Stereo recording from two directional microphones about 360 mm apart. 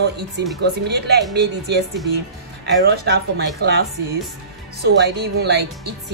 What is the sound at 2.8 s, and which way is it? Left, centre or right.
Speech, right.